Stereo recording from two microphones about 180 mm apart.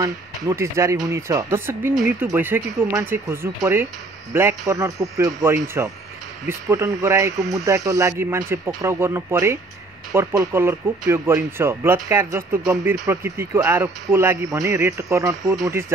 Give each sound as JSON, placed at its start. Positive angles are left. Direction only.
{"t": 0.0, "sound": "speech", "side_deg": -15}